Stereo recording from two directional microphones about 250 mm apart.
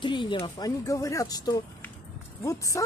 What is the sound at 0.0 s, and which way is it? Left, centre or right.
Speech, centre.